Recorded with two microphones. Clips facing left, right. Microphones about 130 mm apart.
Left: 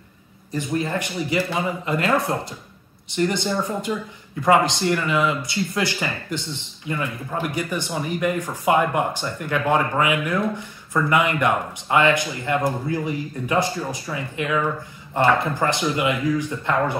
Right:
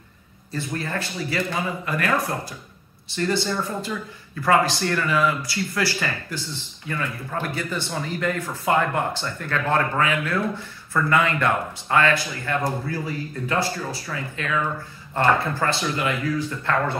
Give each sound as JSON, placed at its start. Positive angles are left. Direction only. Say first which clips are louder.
{"t": 0.5, "sound": "speech", "louder": "left 4 dB", "side_deg": 15}